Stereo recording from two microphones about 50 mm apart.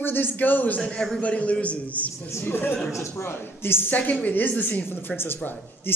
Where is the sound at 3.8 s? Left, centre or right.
Left.